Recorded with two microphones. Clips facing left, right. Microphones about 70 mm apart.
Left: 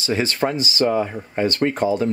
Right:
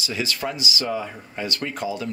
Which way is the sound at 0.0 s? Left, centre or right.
Left.